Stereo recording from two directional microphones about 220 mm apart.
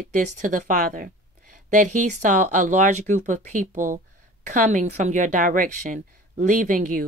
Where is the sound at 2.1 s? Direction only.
35° right (ahead or behind).